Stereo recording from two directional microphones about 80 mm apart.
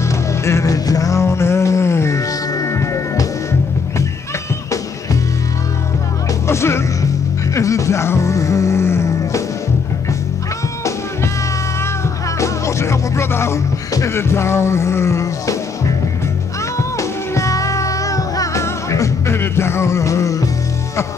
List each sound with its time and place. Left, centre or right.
0.5 s music: left
6.4 s music: left
12.4 s music: left
17.3 s music: left